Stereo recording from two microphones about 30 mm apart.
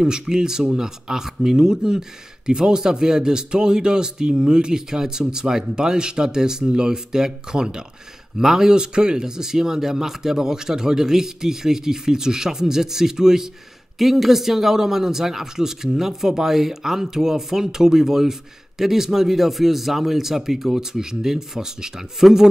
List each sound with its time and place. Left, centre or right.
0.0 s speech: right
13.9 s speech: centre